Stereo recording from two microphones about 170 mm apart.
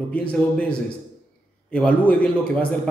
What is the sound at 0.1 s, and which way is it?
A man's voice, 10° left (ahead or behind).